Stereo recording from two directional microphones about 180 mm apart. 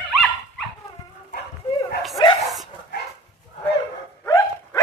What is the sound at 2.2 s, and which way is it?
Dog, 25° left (ahead or behind).